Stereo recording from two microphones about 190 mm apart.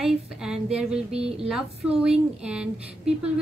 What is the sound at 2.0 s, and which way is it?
A woman's voice, 5° right (ahead or behind).